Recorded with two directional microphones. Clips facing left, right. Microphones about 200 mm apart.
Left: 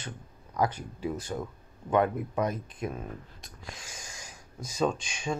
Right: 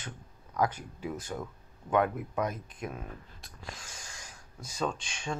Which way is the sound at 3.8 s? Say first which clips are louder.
Left 3 dB; 15° left (ahead or behind).